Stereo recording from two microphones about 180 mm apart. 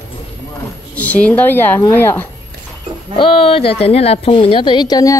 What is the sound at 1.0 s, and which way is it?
Speech, 10° left (ahead or behind).